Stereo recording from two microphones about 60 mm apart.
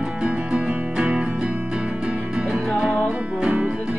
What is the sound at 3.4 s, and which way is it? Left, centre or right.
Music, centre.